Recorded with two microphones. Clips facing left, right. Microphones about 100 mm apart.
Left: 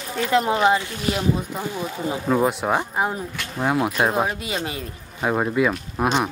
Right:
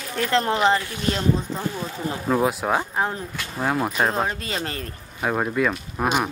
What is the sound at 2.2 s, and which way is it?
Speech, centre (ahead or behind).